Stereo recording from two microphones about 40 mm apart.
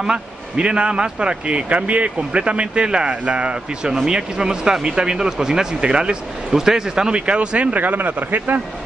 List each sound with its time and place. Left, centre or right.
0.0 s speech: right
1.7 s speech: right
6.5 s speech: centre
7.2 s speech: right
7.8 s speech: right